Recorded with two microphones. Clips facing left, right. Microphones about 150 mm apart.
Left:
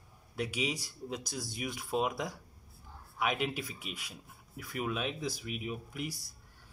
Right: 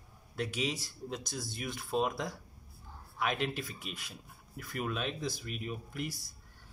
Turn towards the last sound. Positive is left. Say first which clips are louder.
# even
turn(degrees=10)  # may be behind; listen again after turning